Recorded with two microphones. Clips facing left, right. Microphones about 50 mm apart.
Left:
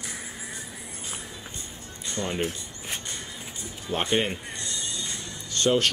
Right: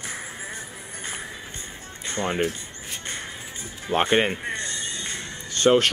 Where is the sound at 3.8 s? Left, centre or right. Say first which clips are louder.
Right 5 dB; right.